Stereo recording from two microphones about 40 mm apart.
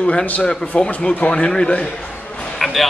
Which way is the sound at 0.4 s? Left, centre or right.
Left.